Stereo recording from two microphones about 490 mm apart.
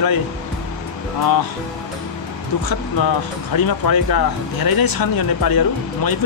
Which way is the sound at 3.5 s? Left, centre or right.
Left.